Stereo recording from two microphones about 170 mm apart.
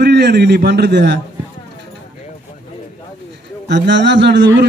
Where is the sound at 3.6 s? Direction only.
90° right.